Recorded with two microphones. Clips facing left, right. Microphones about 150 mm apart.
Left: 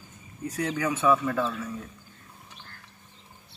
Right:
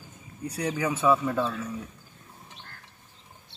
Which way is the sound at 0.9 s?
25° right (ahead or behind).